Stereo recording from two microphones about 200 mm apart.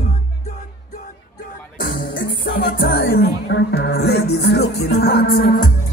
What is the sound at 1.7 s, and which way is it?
Music, 45° left (ahead or behind).